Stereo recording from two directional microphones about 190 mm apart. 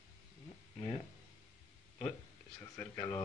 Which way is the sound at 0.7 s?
30° left (ahead or behind).